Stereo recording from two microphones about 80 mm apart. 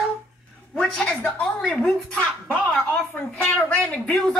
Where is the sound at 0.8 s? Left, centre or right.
Centre.